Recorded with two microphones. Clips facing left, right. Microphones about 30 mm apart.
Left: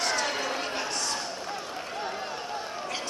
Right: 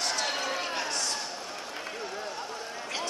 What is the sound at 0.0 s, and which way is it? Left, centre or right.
Crowd, centre.